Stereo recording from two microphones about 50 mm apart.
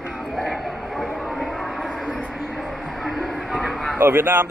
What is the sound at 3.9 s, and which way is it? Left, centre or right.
Speech, right.